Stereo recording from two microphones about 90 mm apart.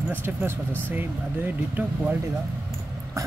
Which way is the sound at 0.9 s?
20° right (ahead or behind).